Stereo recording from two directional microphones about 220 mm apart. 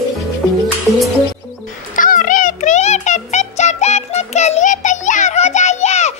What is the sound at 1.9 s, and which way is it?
Music, 35° left (ahead or behind).